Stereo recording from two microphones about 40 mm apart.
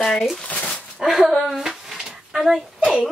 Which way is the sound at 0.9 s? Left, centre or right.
Centre.